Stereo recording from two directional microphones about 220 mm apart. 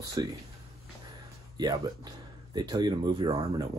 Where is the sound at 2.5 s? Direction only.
20° right (ahead or behind).